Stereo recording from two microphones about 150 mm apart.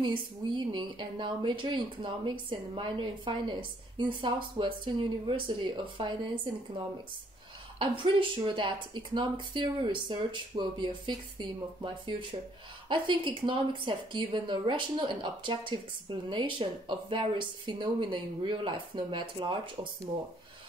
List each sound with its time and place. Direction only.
0.0 s a woman's voice: 30° right (ahead or behind)
7.8 s a woman's voice: 35° right (ahead or behind)